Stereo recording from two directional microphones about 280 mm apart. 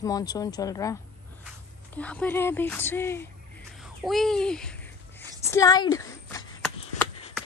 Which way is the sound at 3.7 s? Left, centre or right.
Centre.